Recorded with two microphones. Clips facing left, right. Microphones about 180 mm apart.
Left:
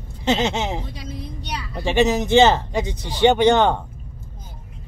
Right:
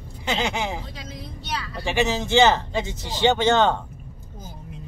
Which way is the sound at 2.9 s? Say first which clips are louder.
Even; 20° right (ahead or behind).